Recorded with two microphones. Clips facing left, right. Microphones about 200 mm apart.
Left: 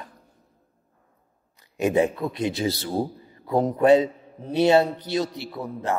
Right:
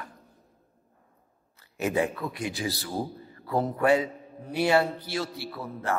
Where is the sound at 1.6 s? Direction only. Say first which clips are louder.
Left 6 dB; 15° left (ahead or behind).